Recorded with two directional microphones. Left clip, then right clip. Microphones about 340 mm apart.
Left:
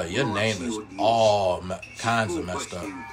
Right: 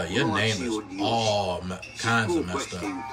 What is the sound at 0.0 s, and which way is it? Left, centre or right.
Speech, centre.